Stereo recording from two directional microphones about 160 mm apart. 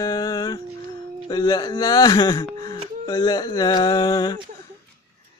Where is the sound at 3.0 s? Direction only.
30° left (ahead or behind).